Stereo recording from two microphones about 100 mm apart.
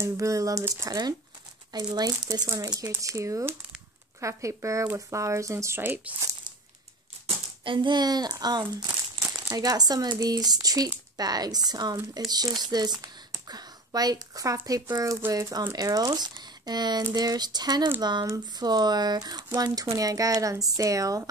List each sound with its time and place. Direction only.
0.0 s speech: 30° right (ahead or behind)
1.7 s speech: 40° right (ahead or behind); by 5.9 s 25° right (ahead or behind)
7.6 s a child's voice: 55° right (ahead or behind); by 21.2 s 35° right (ahead or behind)